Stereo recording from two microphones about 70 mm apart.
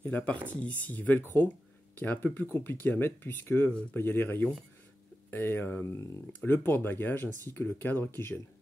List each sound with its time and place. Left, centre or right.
0.0 s speech: left